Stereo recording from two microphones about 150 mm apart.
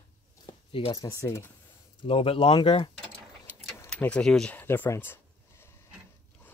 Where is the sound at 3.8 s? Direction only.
10° left (ahead or behind).